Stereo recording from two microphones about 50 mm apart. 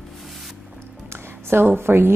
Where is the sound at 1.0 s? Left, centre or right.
Right.